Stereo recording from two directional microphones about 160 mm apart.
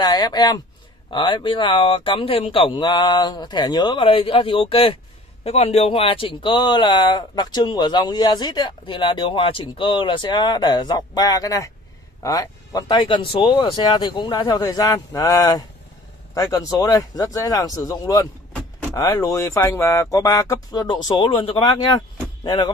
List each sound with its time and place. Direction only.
0.0 s speech: 25° left (ahead or behind)